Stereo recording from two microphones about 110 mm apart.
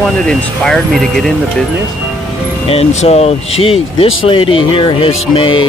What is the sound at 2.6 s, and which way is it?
Speech, 65° left (ahead or behind).